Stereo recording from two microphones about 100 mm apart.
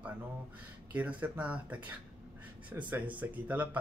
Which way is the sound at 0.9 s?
15° right (ahead or behind).